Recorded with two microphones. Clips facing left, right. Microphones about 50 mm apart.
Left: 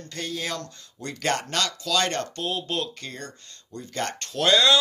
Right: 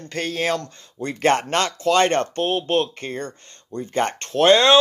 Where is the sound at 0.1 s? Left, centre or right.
Right.